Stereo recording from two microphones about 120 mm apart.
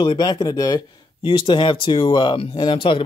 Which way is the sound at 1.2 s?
45° left (ahead or behind).